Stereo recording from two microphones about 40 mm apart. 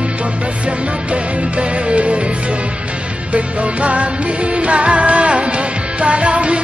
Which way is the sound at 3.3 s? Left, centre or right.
Right.